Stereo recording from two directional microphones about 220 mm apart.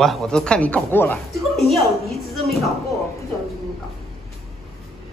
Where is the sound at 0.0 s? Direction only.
Centre (ahead or behind).